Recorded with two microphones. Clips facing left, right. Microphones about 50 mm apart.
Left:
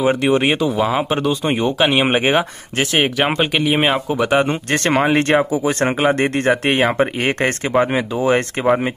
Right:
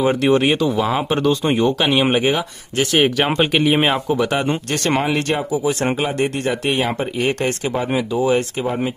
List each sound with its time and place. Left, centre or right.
0.2 s speech: centre
3.0 s speech: centre
4.2 s speech: centre
4.5 s speech: left